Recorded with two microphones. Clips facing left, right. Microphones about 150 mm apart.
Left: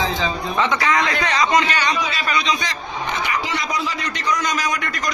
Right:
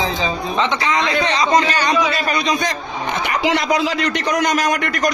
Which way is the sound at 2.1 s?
50° right (ahead or behind).